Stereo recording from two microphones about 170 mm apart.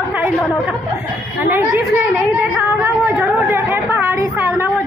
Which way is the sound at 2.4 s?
10° right (ahead or behind).